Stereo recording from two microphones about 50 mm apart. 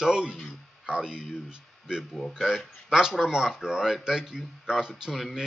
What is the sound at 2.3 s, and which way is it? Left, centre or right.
Speech, centre.